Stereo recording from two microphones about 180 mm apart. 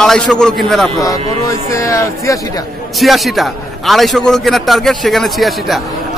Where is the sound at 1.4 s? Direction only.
15° left (ahead or behind).